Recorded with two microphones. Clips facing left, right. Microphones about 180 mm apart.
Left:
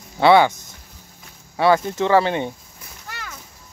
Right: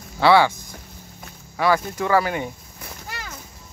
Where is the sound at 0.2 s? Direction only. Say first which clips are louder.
Left 2 dB; 20° left (ahead or behind).